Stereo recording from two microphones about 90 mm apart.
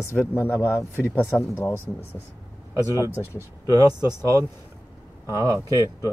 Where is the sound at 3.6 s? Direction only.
40° right (ahead or behind).